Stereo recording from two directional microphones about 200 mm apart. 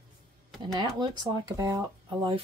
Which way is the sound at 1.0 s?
20° right (ahead or behind).